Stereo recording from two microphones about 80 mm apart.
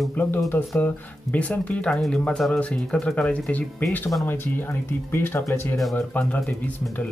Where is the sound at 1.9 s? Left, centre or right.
Centre.